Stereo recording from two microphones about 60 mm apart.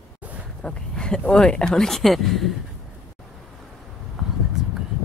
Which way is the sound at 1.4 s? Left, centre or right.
Centre.